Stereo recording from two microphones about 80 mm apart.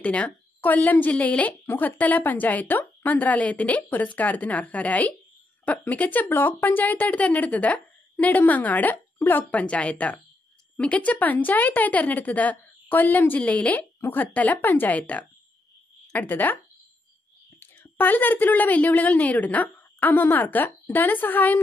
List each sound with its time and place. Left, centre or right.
0.0 s speech: centre
17.6 s a woman's voice: left